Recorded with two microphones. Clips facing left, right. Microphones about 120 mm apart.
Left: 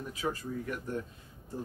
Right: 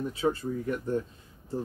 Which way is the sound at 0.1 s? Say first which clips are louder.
Right 3 dB; 30° right (ahead or behind).